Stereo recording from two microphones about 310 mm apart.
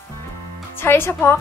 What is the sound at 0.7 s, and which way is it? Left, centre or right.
Speech, centre.